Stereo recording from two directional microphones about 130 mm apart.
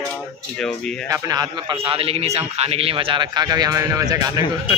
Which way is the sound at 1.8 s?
45° right (ahead or behind).